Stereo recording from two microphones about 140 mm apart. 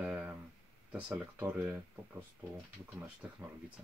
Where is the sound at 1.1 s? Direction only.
20° right (ahead or behind).